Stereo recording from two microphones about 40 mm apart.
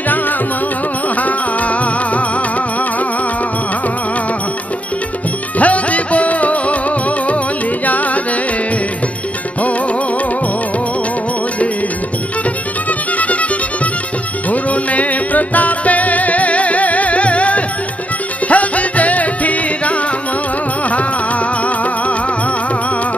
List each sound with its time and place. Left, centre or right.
1.0 s music: left
5.6 s music: left
7.8 s carnatic music: left
13.2 s music: left
14.5 s music: left